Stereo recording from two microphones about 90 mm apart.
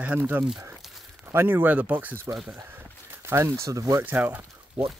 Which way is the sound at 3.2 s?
30° right (ahead or behind).